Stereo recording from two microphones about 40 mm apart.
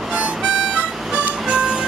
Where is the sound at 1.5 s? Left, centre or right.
Right.